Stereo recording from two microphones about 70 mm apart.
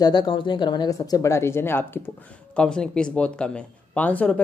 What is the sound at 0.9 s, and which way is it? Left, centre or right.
Speech, left.